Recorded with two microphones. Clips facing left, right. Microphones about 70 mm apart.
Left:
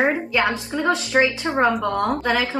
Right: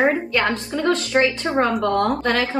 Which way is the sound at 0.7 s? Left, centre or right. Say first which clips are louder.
Right 1 dB; centre.